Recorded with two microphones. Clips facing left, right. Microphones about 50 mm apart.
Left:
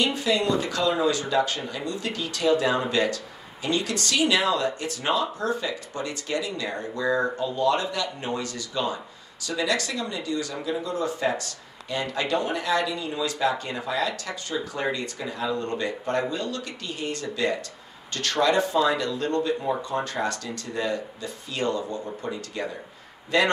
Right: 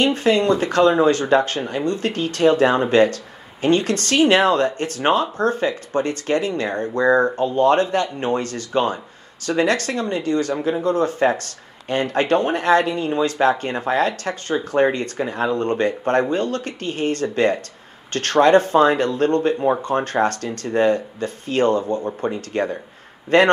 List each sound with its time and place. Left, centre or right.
0.0 s speech: right